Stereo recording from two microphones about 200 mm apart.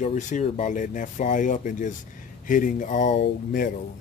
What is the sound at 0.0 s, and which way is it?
Speech, 35° left (ahead or behind).